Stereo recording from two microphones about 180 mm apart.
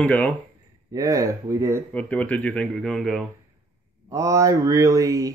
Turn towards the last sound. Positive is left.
turn(degrees=-20)  # may be behind; listen again after turning